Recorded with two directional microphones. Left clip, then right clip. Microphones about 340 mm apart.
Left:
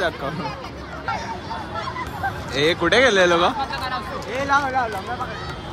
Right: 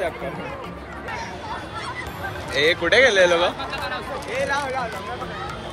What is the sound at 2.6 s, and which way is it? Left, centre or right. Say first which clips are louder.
Speech: even; centre.